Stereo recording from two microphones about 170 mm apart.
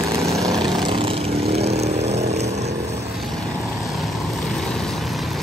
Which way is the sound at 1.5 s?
40° right (ahead or behind).